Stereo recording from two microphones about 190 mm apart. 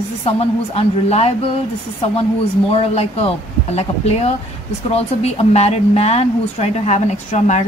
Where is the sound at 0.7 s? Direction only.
35° left (ahead or behind).